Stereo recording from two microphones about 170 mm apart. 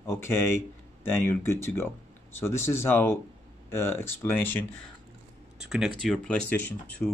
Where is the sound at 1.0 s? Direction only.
15° left (ahead or behind).